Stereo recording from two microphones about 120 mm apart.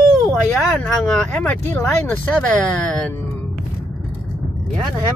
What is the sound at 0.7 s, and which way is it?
Speech, 10° left (ahead or behind).